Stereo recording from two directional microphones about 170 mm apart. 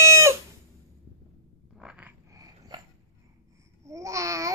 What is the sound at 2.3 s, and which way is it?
Dog, 20° right (ahead or behind).